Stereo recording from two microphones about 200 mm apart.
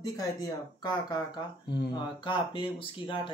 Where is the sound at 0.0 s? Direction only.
15° left (ahead or behind).